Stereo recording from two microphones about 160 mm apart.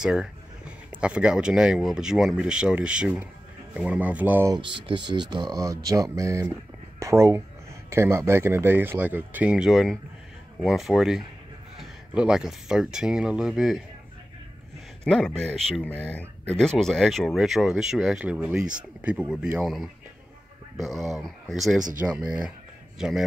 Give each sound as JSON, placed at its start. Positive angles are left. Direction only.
{"t": 0.0, "sound": "speech", "side_deg": -5}
{"t": 4.7, "sound": "speech", "side_deg": -30}
{"t": 15.0, "sound": "speech", "side_deg": 5}
{"t": 22.9, "sound": "speech", "side_deg": 0}